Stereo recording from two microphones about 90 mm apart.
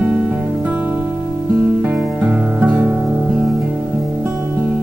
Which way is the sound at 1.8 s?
20° right (ahead or behind).